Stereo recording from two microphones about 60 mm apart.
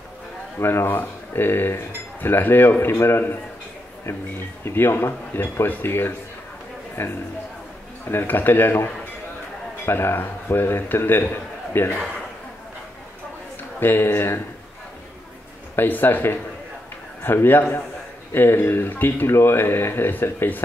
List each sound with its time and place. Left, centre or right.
0.6 s speech: left
4.6 s speech: left
13.7 s speech: left
15.7 s speech: left